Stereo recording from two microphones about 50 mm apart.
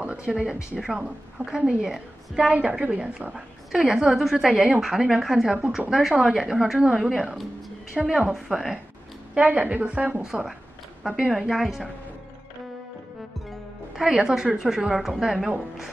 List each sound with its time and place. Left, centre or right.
0.0 s a sound: right
0.4 s a woman's voice: centre
2.4 s a woman's voice: right
3.3 s a woman's voice: centre
9.3 s a woman's voice: right
10.2 s a woman's voice: centre
13.9 s a woman's voice: centre